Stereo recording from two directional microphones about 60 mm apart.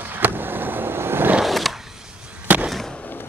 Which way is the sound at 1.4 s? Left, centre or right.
Centre.